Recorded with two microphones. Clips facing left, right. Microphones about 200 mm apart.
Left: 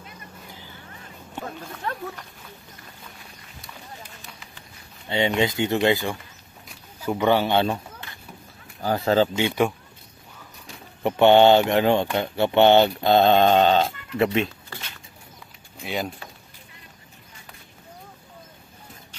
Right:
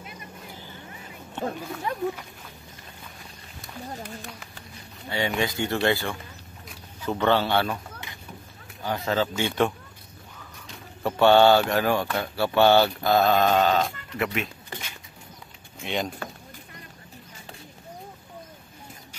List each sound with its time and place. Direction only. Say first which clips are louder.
0.7 s boat: right 2 dB; 15° right (ahead or behind)
1.6 s speech: right 3 dB; 10° right (ahead or behind)
5.1 s mantra: left 4 dB; 20° left (ahead or behind)
6.7 s speech: left 2 dB; 10° left (ahead or behind)
8.8 s speech: left 6 dB; 35° left (ahead or behind)
9.4 s speech: left 2 dB; 10° left (ahead or behind)
11.0 s mantra: left 2 dB; 20° left (ahead or behind)
14.7 s a sound: right 1 dB; 10° right (ahead or behind)
15.8 s speech: even; 5° left (ahead or behind)